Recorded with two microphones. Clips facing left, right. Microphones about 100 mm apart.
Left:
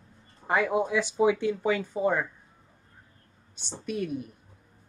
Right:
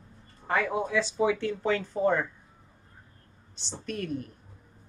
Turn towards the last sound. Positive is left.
turn(degrees=10)  # may be behind; listen again after turning